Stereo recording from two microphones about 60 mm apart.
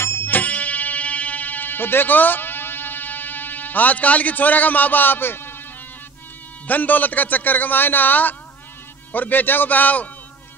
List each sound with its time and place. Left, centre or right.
0.0 s music: left
0.3 s music: left
6.7 s a man's voice: left